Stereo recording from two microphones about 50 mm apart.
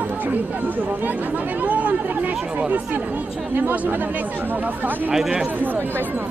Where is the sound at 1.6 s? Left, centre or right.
Right.